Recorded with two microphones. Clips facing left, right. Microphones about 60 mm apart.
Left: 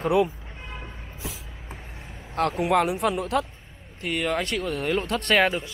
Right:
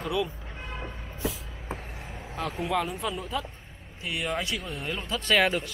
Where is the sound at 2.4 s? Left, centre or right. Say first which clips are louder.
Left 7 dB; left.